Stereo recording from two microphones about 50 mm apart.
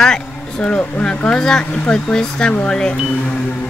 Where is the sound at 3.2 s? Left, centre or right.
Left.